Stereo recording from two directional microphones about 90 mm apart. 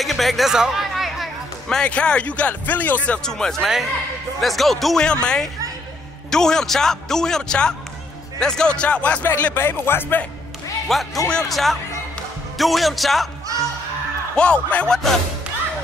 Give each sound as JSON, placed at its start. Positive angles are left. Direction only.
{"t": 0.0, "sound": "speech", "side_deg": 0}
{"t": 3.3, "sound": "speech", "side_deg": 5}
{"t": 9.2, "sound": "speech", "side_deg": 30}
{"t": 10.9, "sound": "speech", "side_deg": 5}
{"t": 14.3, "sound": "speech", "side_deg": 10}